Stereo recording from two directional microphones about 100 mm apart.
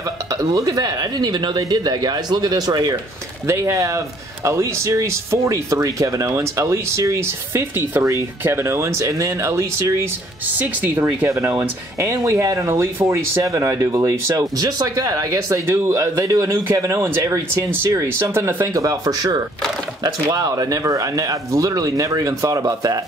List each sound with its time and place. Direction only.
0.4 s speech: 35° right (ahead or behind)
3.4 s speech: 30° right (ahead or behind)
10.6 s speech: 20° right (ahead or behind); by 22.9 s 40° right (ahead or behind)